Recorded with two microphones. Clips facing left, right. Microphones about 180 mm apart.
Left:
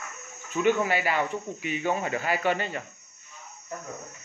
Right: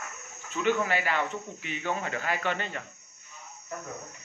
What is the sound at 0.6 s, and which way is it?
Speech, 10° left (ahead or behind).